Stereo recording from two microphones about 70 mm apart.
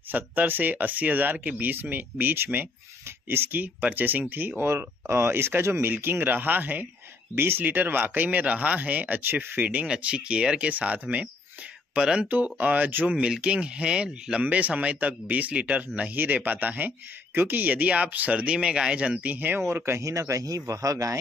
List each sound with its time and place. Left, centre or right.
0.1 s speech: right
19.7 s speech: right